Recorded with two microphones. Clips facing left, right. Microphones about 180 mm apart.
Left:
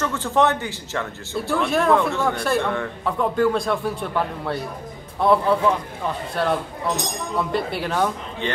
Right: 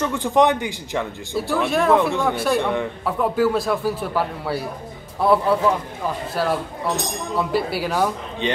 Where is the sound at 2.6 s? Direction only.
15° right (ahead or behind).